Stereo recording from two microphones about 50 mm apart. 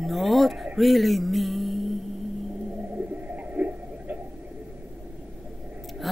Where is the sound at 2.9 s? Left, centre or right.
Right.